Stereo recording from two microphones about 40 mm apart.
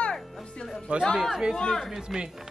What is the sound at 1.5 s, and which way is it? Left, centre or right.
Speech, centre.